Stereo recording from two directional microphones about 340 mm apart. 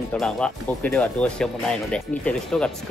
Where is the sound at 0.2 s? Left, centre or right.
Centre.